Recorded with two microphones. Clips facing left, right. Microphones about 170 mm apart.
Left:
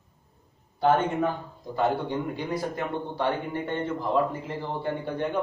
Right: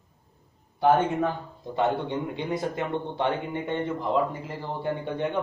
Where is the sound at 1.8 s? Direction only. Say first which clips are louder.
Even; 25° right (ahead or behind).